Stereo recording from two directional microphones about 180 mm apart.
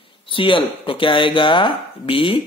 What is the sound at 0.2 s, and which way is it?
Speech, 30° left (ahead or behind).